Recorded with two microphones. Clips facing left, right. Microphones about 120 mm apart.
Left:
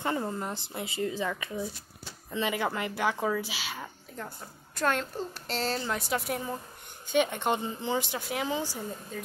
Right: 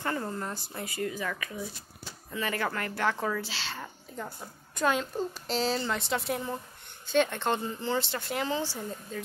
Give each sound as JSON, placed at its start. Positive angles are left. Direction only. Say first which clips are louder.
{"t": 0.0, "sound": "a woman's voice", "louder": "left 2 dB", "side_deg": 20}
{"t": 4.2, "sound": "a woman's voice", "louder": "right 2 dB", "side_deg": -5}
{"t": 7.1, "sound": "speech", "louder": "even", "side_deg": 15}